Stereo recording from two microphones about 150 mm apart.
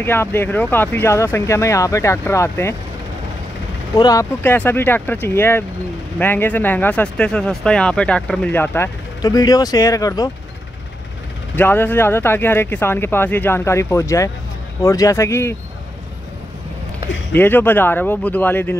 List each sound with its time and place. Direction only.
0.0 s speech: 15° left (ahead or behind)
3.9 s speech: 25° left (ahead or behind)
11.5 s speech: 15° left (ahead or behind)
17.3 s speech: 15° left (ahead or behind)